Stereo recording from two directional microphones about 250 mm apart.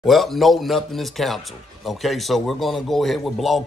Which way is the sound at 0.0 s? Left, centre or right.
Centre.